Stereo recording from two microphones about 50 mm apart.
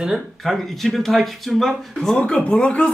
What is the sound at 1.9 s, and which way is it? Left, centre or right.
Speech, centre.